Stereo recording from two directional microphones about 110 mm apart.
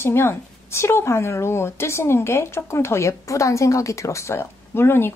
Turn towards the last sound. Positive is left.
turn(degrees=20)  # may be behind; listen again after turning